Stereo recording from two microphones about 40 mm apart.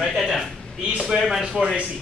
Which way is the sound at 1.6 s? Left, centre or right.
Centre.